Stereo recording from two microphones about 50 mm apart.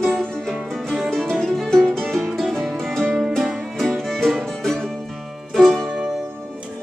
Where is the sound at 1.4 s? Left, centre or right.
Centre.